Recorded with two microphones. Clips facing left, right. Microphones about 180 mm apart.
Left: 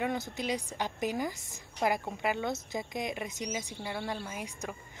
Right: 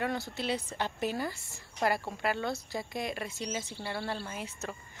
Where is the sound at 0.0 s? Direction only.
15° left (ahead or behind).